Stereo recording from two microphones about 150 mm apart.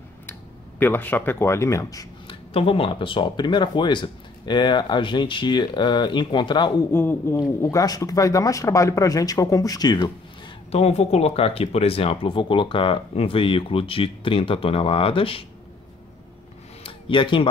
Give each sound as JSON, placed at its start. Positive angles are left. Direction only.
{"t": 0.3, "sound": "speech", "side_deg": 15}
{"t": 2.2, "sound": "speech", "side_deg": 40}
{"t": 6.9, "sound": "a man's voice", "side_deg": 15}
{"t": 10.7, "sound": "speech", "side_deg": 45}
{"t": 16.8, "sound": "a sound", "side_deg": 35}